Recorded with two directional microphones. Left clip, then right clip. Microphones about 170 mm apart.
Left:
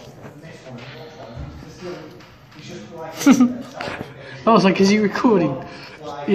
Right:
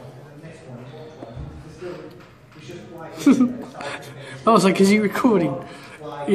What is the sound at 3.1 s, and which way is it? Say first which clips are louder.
Speech: left 2 dB; 35° left (ahead or behind).